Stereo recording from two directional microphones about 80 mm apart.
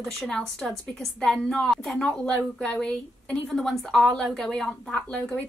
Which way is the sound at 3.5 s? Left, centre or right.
Centre.